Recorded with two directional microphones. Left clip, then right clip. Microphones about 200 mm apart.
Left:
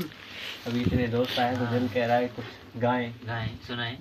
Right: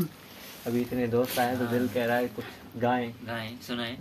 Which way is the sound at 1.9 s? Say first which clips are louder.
Left 2 dB; 5° right (ahead or behind).